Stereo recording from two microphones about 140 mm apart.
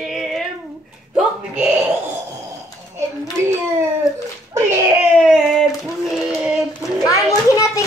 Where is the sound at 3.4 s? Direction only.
20° right (ahead or behind).